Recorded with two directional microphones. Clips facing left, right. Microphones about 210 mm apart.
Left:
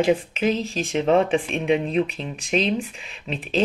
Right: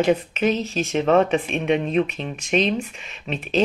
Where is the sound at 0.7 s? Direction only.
30° left (ahead or behind).